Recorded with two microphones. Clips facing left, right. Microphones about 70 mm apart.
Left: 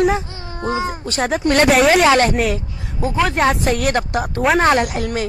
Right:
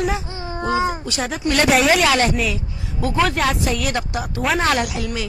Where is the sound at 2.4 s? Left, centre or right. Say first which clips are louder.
Left 4 dB; left.